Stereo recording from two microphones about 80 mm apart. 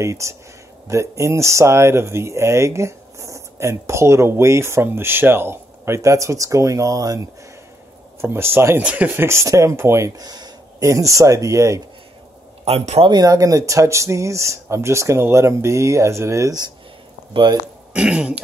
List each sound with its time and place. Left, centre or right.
0.0 s speech: right
8.2 s speech: right
8.8 s speech: centre
9.1 s speech: right
10.1 s a sound: right
10.9 s speech: right
13.2 s speech: right
17.3 s speech: right
17.9 s throat clearing: centre